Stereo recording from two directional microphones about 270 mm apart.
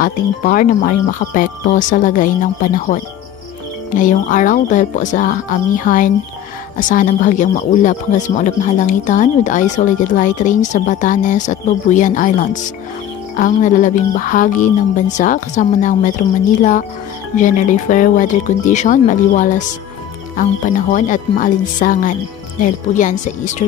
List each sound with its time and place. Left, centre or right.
0.0 s speech: left
17.4 s speech: left